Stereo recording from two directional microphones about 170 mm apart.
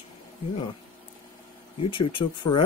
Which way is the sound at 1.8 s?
30° left (ahead or behind).